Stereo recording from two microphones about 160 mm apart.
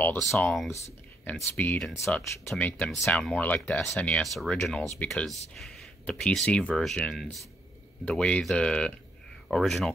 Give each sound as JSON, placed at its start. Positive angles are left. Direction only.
{"t": 0.7, "sound": "speech", "side_deg": 20}
{"t": 2.5, "sound": "speech", "side_deg": 5}